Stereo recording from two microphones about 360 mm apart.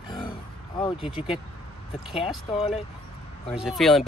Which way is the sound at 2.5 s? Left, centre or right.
Centre.